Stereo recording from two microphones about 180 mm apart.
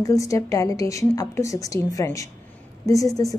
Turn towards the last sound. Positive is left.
turn(degrees=20)  # may be behind; listen again after turning